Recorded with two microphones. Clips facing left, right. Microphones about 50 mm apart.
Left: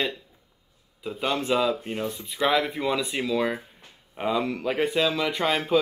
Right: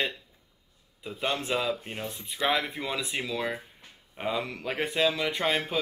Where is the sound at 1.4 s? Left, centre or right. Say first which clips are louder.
Left 5 dB; centre.